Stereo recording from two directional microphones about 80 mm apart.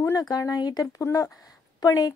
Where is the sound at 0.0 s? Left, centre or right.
Left.